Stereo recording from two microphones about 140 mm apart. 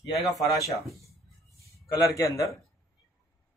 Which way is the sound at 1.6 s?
25° left (ahead or behind).